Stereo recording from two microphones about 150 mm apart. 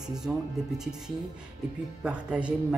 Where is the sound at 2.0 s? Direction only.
10° right (ahead or behind).